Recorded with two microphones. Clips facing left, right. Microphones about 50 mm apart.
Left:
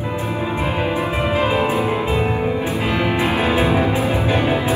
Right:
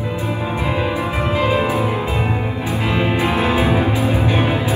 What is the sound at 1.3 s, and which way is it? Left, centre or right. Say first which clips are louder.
Music: right 1 dB; left.